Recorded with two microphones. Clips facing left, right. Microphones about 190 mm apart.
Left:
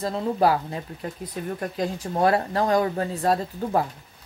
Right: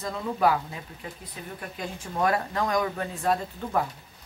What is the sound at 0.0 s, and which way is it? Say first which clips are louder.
Speech: left 3 dB; 30° left (ahead or behind).